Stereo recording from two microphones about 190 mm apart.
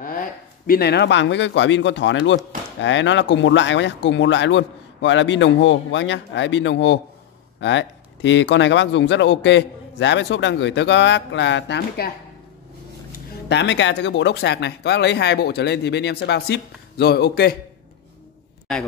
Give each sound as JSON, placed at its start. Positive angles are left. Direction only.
{"t": 0.0, "sound": "speech", "side_deg": 45}
{"t": 13.5, "sound": "speech", "side_deg": 70}